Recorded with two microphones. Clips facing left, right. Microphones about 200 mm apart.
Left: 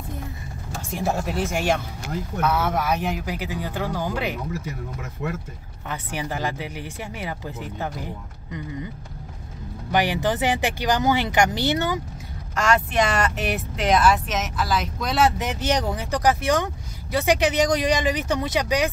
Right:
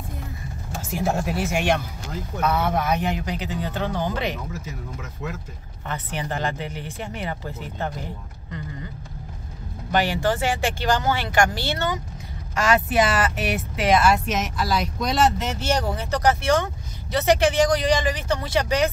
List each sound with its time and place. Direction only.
0.8 s speech: centre (ahead or behind)
5.9 s speech: 5° left (ahead or behind)
9.9 s speech: 15° left (ahead or behind)
12.5 s speech: 5° right (ahead or behind)
15.3 s speech: 15° left (ahead or behind)